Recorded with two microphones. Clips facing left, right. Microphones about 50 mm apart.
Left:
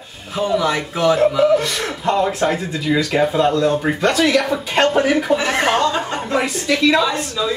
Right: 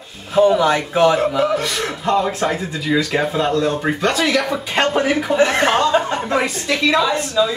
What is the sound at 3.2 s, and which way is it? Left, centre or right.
Speech, centre.